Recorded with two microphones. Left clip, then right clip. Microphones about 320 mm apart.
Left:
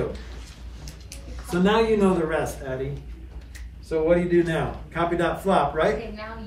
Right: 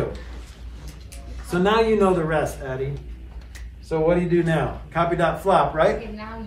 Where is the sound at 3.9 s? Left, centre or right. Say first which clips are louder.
Even; centre.